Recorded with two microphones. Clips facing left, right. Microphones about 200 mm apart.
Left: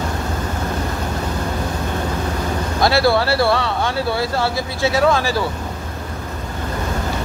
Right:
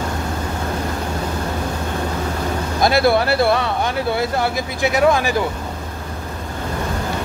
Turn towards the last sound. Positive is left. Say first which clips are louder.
# right 1 dB
turn(degrees=-20)  # may be behind; listen again after turning